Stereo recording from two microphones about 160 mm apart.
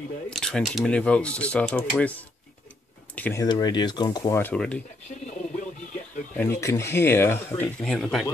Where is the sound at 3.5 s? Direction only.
25° left (ahead or behind).